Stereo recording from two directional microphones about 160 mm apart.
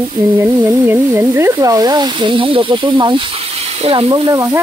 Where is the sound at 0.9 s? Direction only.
15° right (ahead or behind).